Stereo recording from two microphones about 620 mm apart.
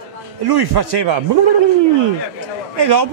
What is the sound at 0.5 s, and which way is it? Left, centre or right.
Speech, right.